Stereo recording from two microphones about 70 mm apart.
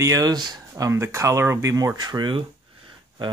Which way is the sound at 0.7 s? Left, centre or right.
Right.